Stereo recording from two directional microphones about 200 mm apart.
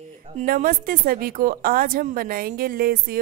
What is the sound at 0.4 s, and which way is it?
Speech, 45° right (ahead or behind).